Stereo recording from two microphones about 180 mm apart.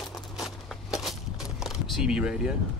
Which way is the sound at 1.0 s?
Centre (ahead or behind).